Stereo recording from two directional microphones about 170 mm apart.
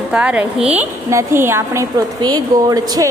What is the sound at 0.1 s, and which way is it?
A woman's voice, 5° right (ahead or behind).